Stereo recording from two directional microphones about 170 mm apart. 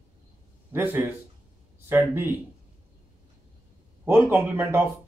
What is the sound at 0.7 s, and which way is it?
Speech, 10° right (ahead or behind).